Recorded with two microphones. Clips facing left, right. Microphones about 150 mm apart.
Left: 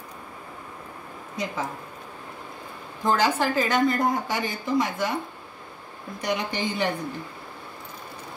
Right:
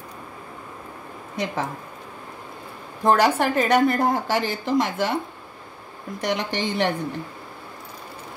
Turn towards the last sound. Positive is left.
turn(degrees=-70)  # may be behind; listen again after turning